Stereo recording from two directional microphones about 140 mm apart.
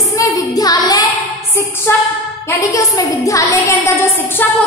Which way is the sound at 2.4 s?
25° left (ahead or behind).